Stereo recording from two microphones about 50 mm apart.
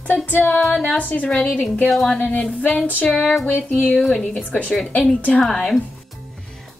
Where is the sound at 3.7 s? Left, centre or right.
Left.